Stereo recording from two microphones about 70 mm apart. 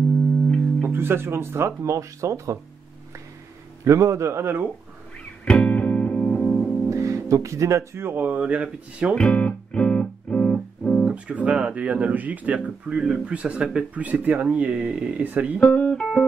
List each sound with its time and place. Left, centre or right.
0.7 s speech: right
3.8 s a man's voice: right
5.4 s music: centre
6.9 s speech: right
8.3 s speech: right
9.1 s music: centre
11.1 s speech: centre
12.9 s speech: centre
15.6 s speech: left
15.9 s music: centre